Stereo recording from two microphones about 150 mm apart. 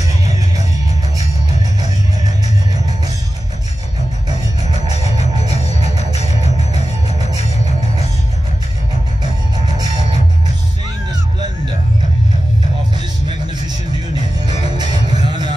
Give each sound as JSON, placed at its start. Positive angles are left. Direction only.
{"t": 4.8, "sound": "music", "side_deg": -25}
{"t": 14.5, "sound": "music", "side_deg": -30}